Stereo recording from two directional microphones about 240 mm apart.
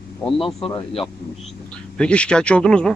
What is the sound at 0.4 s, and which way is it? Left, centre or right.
Speech, left.